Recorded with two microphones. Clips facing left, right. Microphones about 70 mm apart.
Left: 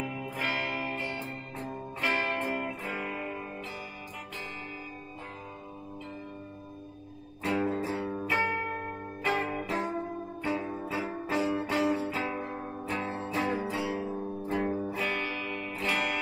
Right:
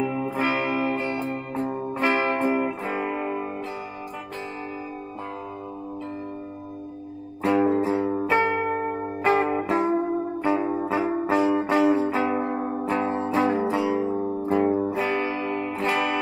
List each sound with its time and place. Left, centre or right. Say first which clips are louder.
0.0 s music: right 9 dB; right
2.0 s music: right 7 dB; right
7.4 s music: right 9 dB; right
12.0 s music: right 9 dB; right